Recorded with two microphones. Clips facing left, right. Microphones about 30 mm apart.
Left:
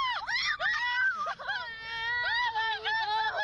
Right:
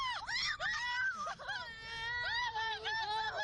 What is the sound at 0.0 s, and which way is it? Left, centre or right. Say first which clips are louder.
Screaming: left 7 dB; left.